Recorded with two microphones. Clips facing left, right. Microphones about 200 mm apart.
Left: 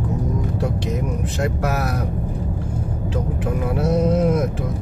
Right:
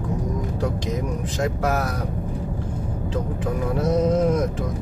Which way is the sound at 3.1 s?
5° left (ahead or behind).